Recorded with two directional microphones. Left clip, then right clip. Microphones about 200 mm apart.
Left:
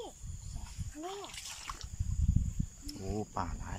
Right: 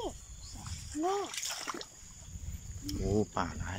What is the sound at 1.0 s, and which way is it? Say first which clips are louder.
Speech: right 9 dB; 40° right (ahead or behind).